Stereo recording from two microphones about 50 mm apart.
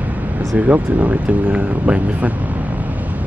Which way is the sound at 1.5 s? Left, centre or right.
Right.